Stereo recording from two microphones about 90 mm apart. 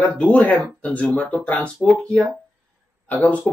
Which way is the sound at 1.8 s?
Centre (ahead or behind).